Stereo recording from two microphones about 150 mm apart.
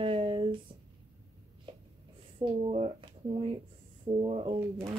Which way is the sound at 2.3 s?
35° right (ahead or behind).